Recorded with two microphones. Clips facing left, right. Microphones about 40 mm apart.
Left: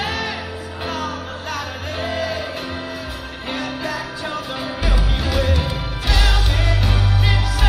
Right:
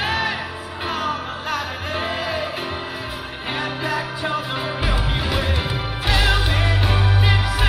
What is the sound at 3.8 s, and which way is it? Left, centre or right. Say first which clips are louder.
Music: right 2 dB; centre.